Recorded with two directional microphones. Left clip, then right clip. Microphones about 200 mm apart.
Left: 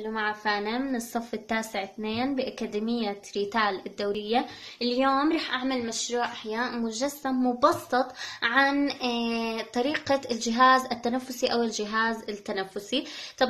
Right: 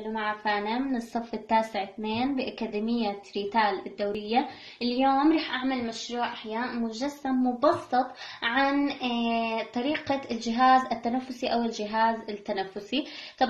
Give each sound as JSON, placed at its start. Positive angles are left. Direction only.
{"t": 0.1, "sound": "a woman's voice", "side_deg": 40}